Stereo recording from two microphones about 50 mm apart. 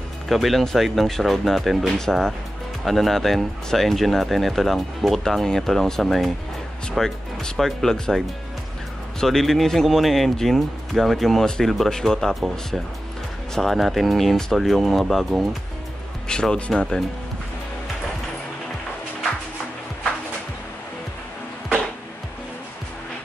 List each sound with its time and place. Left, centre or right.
0.3 s speech: centre
1.9 s speech: centre
9.2 s speech: centre
13.6 s speech: centre
16.3 s speech: centre